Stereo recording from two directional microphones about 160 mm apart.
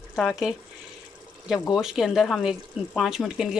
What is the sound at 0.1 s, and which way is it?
Speech, 5° left (ahead or behind).